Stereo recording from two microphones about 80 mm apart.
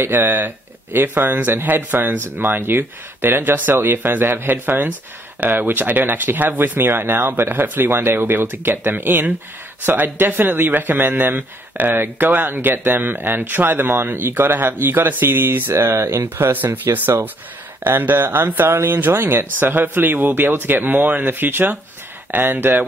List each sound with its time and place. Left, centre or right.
0.0 s speech: right
16.5 s speech: right